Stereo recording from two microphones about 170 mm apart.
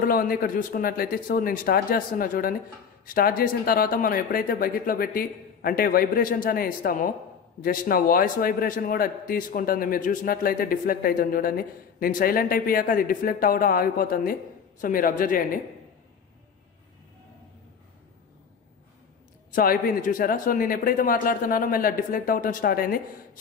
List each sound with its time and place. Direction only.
0.0 s a man's voice: 55° left (ahead or behind)
19.5 s a man's voice: 55° left (ahead or behind)